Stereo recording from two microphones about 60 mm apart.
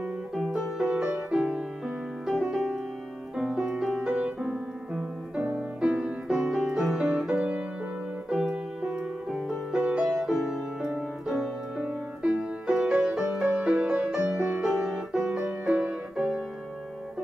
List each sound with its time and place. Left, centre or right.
0.5 s music: centre
5.4 s music: right
5.9 s music: centre
14.7 s music: centre
16.2 s music: centre